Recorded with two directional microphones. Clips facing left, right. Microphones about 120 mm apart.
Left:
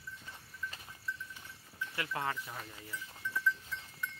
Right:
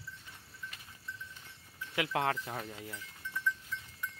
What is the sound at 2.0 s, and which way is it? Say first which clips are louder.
Speech: right 6 dB; 75° right (ahead or behind).